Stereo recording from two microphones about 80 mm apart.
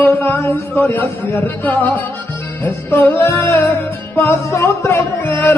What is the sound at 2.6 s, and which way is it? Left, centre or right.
Music, left.